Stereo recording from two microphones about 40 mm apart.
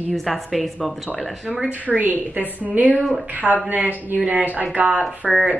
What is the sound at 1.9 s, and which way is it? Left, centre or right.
A woman's voice, right.